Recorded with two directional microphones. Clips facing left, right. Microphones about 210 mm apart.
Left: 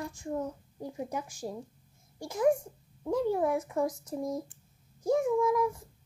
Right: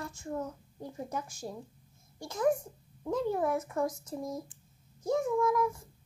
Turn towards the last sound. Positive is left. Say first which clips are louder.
# left 2 dB
turn(degrees=15)  # may be behind; listen again after turning